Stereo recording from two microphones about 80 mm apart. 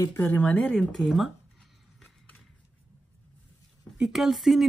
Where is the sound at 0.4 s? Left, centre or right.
Centre.